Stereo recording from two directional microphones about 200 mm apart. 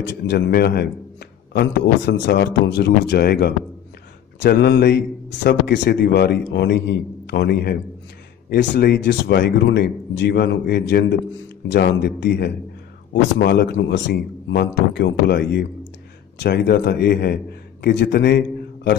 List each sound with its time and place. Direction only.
0.3 s a man's voice: 55° left (ahead or behind)